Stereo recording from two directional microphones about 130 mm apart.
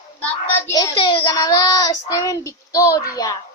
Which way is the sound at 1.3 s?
30° left (ahead or behind).